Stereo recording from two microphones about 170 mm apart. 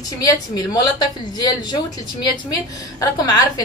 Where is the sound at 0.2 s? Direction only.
25° left (ahead or behind).